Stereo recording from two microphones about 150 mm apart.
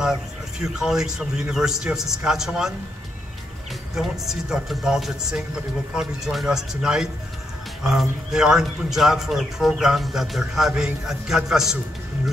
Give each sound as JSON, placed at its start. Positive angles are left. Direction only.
{"t": 0.0, "sound": "a man's voice", "side_deg": -5}
{"t": 3.9, "sound": "a man's voice", "side_deg": 0}